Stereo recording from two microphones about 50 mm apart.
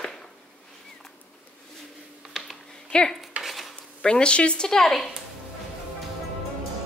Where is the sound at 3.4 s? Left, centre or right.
Centre.